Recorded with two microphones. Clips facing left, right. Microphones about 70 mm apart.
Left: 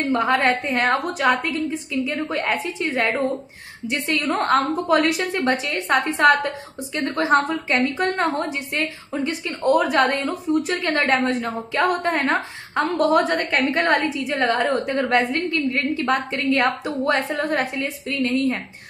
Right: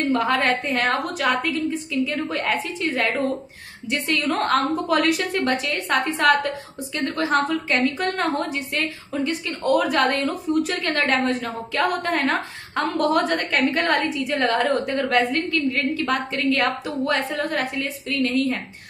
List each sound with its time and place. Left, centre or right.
0.1 s a woman's voice: centre
1.4 s a woman's voice: centre
4.3 s a woman's voice: centre